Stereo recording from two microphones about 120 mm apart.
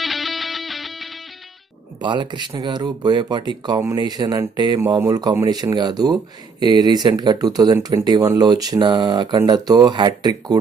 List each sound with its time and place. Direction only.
0.0 s music: centre (ahead or behind)
2.0 s speech: 40° right (ahead or behind)